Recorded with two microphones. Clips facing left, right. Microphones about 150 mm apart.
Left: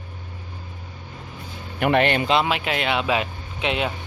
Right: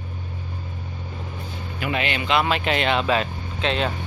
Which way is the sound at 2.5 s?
10° left (ahead or behind).